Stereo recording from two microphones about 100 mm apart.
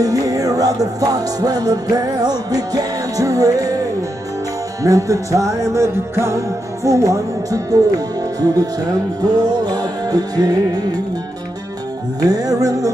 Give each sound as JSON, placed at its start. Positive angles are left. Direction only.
{"t": 0.0, "sound": "music", "side_deg": -35}
{"t": 4.8, "sound": "music", "side_deg": -35}
{"t": 12.2, "sound": "music", "side_deg": -40}